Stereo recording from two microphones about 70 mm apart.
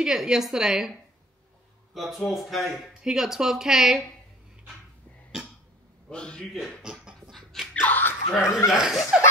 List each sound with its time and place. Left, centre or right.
0.0 s a woman's voice: centre
2.0 s speech: centre
6.0 s a man's voice: centre
6.4 s speech: centre
6.8 s a sound: centre
7.8 s speech: left
8.4 s speech: left
8.6 s a woman's voice: centre